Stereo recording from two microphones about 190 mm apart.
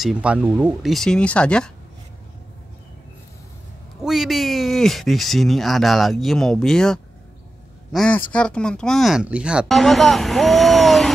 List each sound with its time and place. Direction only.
0.0 s a woman's voice: 5° right (ahead or behind)
4.0 s a woman's voice: centre (ahead or behind)